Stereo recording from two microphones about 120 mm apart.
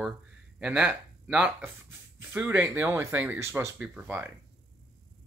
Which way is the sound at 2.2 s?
20° right (ahead or behind).